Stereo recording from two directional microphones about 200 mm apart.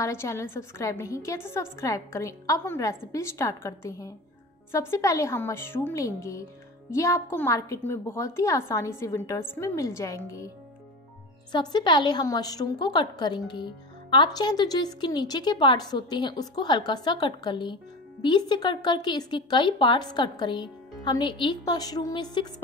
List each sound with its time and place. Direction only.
0.0 s a woman's voice: 15° left (ahead or behind)
11.5 s speech: 20° left (ahead or behind)